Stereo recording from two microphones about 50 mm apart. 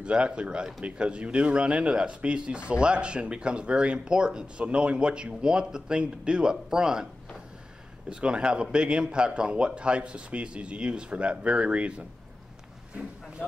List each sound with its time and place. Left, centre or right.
0.0 s speech: right
8.1 s speech: centre